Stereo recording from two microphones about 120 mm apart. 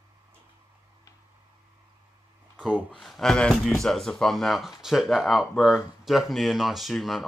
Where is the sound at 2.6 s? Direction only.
10° right (ahead or behind).